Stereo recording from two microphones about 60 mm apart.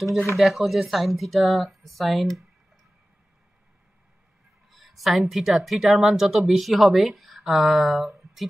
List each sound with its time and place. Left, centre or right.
0.4 s speech: centre
4.6 s a woman's voice: centre